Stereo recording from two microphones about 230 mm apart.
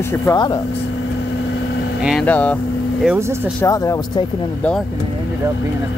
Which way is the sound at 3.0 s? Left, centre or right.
Centre.